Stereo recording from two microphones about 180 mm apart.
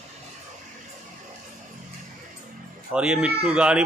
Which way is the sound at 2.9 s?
5° right (ahead or behind).